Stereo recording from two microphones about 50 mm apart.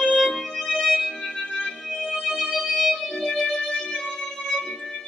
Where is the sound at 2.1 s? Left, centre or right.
Centre.